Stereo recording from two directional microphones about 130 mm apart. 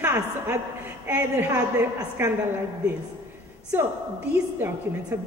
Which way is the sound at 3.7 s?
15° right (ahead or behind).